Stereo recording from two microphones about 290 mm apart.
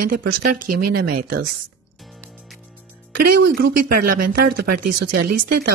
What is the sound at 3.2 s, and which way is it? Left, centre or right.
Speech, right.